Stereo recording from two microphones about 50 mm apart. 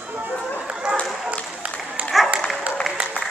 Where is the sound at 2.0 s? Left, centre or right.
Right.